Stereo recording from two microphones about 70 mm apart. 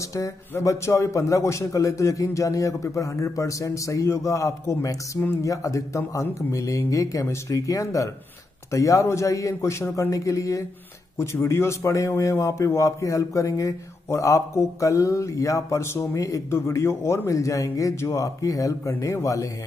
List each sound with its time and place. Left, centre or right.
0.1 s a man's voice: left
16.2 s a man's voice: left